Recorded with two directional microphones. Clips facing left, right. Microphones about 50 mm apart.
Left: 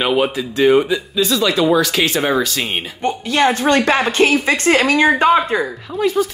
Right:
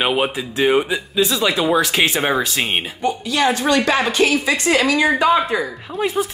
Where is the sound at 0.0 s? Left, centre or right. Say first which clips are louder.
Left 2 dB; centre.